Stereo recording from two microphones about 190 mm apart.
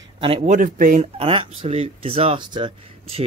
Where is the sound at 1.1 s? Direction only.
30° right (ahead or behind).